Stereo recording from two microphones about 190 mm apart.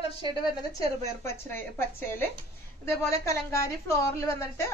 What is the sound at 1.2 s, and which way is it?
A woman's voice, 10° left (ahead or behind).